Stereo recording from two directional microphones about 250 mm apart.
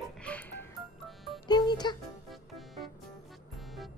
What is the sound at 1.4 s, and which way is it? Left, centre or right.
Music, centre.